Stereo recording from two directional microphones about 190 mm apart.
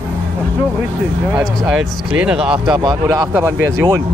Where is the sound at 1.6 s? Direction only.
5° right (ahead or behind).